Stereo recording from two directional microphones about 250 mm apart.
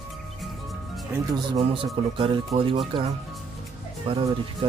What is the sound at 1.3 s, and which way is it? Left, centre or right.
Speech, right.